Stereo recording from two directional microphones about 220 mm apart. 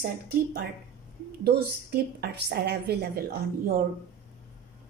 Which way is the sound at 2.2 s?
50° right (ahead or behind).